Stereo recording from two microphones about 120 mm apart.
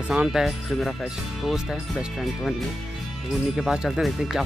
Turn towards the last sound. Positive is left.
turn(degrees=-5)  # may be behind; listen again after turning